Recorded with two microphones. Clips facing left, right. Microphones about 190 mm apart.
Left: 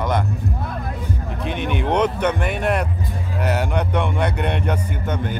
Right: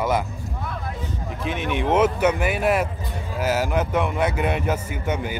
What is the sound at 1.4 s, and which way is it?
A man's voice, centre (ahead or behind).